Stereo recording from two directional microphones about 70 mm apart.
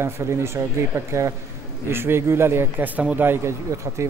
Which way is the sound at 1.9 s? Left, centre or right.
Right.